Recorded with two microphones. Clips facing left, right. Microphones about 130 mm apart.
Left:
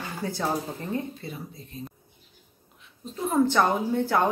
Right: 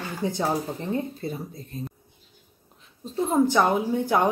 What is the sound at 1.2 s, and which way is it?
Speech, 40° right (ahead or behind).